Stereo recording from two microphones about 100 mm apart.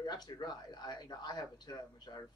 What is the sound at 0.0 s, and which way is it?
Speech, 45° left (ahead or behind).